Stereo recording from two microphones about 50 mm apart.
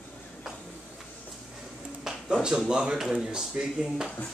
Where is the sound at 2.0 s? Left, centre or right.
Centre.